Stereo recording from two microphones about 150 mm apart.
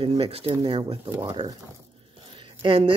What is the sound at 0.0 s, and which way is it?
Speech, 40° right (ahead or behind).